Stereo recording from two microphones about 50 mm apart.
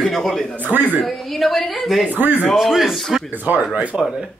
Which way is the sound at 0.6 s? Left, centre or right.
Right.